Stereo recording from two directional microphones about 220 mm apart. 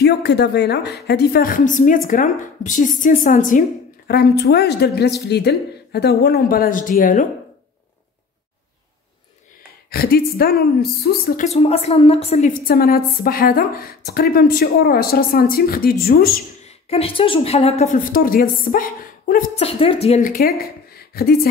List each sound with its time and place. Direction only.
0.0 s a woman's voice: 50° left (ahead or behind)
9.8 s speech: 45° left (ahead or behind)
11.4 s a woman's voice: 25° left (ahead or behind)
16.6 s a woman's voice: 25° left (ahead or behind)
19.6 s a woman's voice: 25° left (ahead or behind); by 21.4 s 45° left (ahead or behind)